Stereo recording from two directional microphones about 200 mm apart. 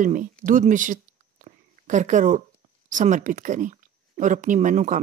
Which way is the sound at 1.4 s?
35° right (ahead or behind).